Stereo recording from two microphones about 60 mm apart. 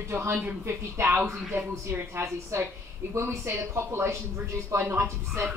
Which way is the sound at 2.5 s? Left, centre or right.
Right.